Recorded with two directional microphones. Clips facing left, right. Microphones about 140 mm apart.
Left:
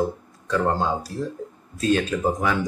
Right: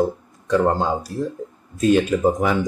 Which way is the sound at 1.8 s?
10° right (ahead or behind).